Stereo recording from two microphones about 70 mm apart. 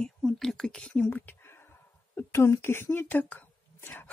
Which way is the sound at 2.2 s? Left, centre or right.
Left.